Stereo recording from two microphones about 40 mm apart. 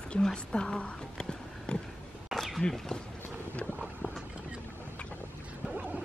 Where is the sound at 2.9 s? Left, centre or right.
Left.